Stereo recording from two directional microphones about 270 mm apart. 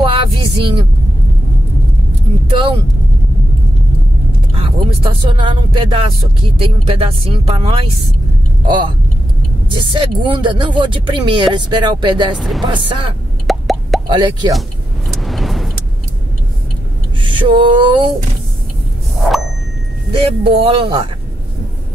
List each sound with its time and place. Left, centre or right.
0.0 s music: centre
4.6 s speech: centre
12.4 s speech: centre
12.6 s speech: centre
13.5 s plop: centre
14.0 s speech: centre
15.1 s vehicle: centre
17.2 s a sound: centre
20.2 s speech: right